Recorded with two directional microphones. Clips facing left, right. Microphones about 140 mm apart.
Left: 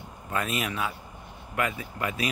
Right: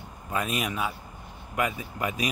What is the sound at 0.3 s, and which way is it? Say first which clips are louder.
Speech: right 1 dB; 10° right (ahead or behind).